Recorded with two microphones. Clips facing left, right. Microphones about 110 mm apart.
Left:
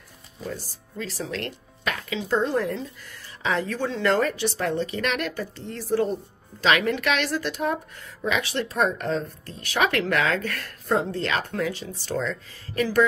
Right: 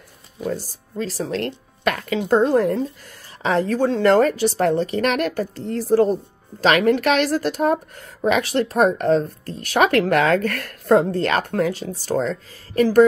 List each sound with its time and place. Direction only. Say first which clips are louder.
0.5 s speech: right 8 dB; 40° right (ahead or behind)
1.9 s speech: right 7 dB; 50° right (ahead or behind)